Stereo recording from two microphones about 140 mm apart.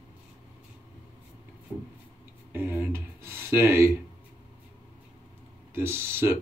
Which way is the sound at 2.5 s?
15° right (ahead or behind).